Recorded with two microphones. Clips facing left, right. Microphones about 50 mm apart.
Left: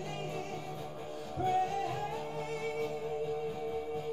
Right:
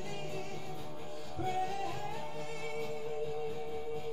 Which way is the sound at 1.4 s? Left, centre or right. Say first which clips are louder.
Left 4 dB; centre.